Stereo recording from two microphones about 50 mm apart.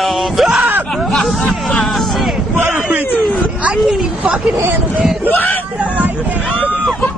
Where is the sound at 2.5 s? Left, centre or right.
Right.